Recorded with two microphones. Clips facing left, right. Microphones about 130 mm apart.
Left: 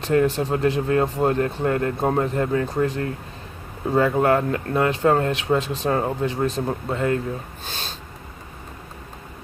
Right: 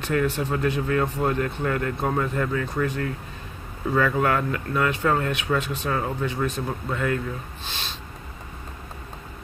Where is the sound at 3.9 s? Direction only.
30° left (ahead or behind).